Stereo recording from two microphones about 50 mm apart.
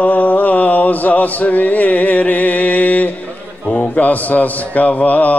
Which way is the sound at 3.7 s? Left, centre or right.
Left.